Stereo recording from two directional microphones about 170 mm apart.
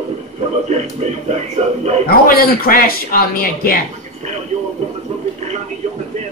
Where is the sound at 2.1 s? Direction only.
60° left (ahead or behind).